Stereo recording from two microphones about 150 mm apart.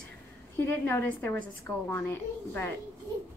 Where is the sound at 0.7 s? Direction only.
15° left (ahead or behind).